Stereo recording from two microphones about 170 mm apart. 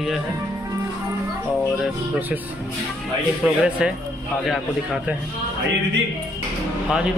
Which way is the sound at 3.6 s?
5° right (ahead or behind).